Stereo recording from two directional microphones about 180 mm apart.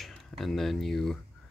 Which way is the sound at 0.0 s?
Centre (ahead or behind).